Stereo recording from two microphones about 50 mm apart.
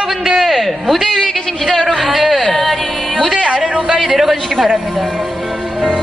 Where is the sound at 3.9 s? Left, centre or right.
Centre.